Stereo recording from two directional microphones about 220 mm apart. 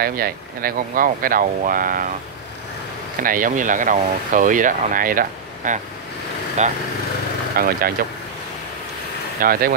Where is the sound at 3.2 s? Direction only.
40° right (ahead or behind).